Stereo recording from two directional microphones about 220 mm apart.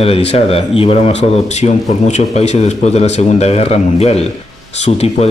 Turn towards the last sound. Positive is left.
turn(degrees=30)  # may be behind; listen again after turning